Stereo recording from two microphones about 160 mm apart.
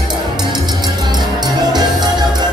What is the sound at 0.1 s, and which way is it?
Music, 25° right (ahead or behind).